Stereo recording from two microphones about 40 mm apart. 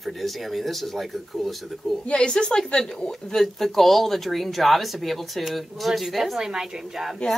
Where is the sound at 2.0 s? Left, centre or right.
Left.